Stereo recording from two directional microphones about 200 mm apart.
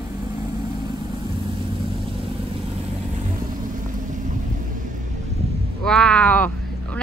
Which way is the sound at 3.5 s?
40° right (ahead or behind).